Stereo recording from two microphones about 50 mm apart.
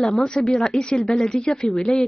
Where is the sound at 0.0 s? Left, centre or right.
Centre.